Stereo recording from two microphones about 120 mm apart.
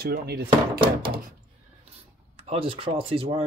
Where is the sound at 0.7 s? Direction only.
50° right (ahead or behind).